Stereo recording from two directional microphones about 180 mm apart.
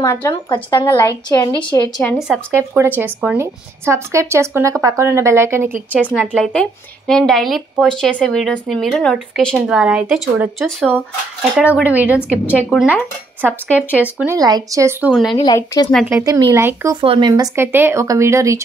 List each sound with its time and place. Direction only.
0.0 s a woman's voice: 15° left (ahead or behind)
2.0 s speech: centre (ahead or behind)
2.5 s speech: 15° right (ahead or behind)
6.2 s speech: 5° left (ahead or behind)
13.7 s a woman's voice: 10° left (ahead or behind)
14.0 s speech: 10° right (ahead or behind)
15.4 s speech: 20° left (ahead or behind)
16.1 s speech: 15° right (ahead or behind)
17.0 s speech: 30° right (ahead or behind)
17.3 s speech: 15° right (ahead or behind)